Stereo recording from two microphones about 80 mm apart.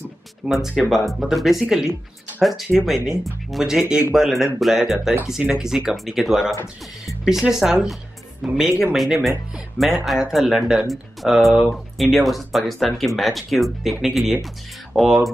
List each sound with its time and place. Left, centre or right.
0.5 s speech: centre
6.5 s speech: left
7.2 s speech: centre